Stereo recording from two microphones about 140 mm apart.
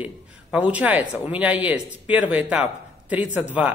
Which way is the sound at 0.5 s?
10° right (ahead or behind).